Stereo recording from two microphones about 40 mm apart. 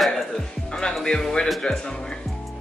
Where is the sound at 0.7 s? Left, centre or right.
Left.